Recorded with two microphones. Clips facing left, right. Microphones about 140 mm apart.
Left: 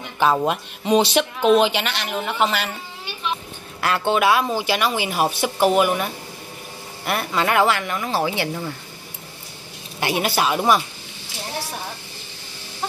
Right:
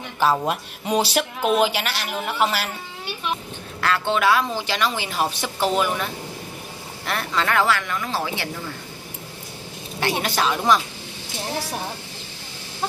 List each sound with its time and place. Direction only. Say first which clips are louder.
0.8 s speech: left 4 dB; 10° right (ahead or behind)
3.8 s speech: left 2 dB; 15° left (ahead or behind)
7.1 s speech: left 2 dB; 15° left (ahead or behind)
9.9 s speech: left 2 dB; 10° left (ahead or behind)